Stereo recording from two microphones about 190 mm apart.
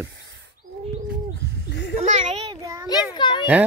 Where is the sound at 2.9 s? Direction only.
25° left (ahead or behind).